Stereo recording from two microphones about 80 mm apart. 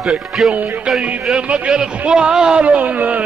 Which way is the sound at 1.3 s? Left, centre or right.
Centre.